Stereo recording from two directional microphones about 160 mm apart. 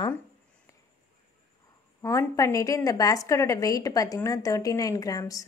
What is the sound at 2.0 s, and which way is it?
A woman's voice, 20° left (ahead or behind).